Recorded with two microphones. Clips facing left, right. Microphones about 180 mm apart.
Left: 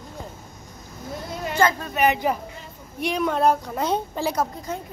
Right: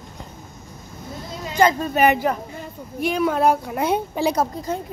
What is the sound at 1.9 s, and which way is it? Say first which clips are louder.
Speech: right 3 dB; 45° right (ahead or behind).